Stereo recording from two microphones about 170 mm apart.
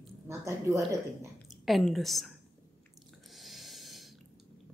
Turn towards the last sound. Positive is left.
turn(degrees=0)  # may be behind; listen again after turning